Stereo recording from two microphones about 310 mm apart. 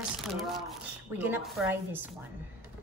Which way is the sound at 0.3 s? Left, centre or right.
Centre.